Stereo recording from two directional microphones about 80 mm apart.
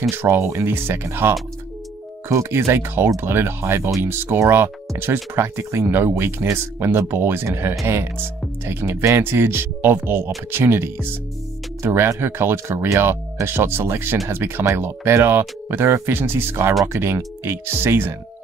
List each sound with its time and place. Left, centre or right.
0.1 s speech: right